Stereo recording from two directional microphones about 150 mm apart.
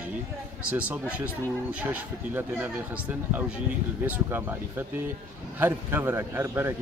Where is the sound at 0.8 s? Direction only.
10° right (ahead or behind).